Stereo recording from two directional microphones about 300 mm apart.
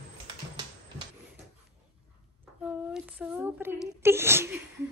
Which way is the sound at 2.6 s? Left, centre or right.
Centre.